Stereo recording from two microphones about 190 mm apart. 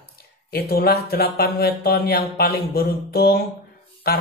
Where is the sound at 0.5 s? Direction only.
55° left (ahead or behind).